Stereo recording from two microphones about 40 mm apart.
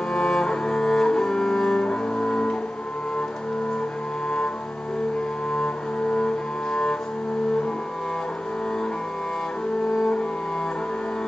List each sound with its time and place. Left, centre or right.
0.1 s cello: centre
1.9 s music: left
5.5 s cello: left
9.9 s cello: centre